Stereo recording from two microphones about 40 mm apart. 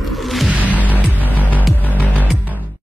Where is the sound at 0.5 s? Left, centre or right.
Right.